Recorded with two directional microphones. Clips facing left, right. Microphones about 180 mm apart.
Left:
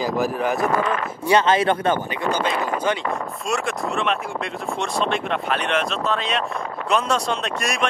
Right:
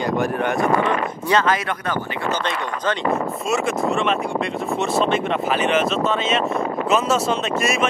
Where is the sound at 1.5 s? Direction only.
30° left (ahead or behind).